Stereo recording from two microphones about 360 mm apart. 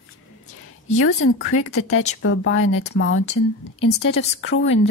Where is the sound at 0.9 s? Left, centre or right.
Left.